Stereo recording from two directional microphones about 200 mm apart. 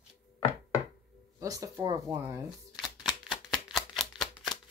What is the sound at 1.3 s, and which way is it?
Speech, 15° right (ahead or behind).